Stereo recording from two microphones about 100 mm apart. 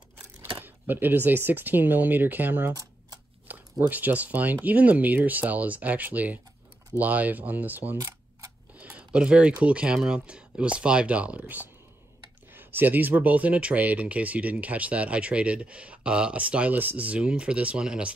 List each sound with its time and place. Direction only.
0.6 s speech: 20° right (ahead or behind)
3.5 s a sound: 15° right (ahead or behind)
3.8 s speech: 15° right (ahead or behind)